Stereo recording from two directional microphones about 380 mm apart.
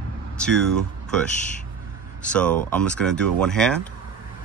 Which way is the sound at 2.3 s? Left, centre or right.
Centre.